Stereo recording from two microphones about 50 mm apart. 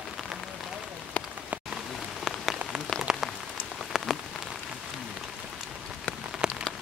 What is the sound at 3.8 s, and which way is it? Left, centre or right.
Rain on surface, centre.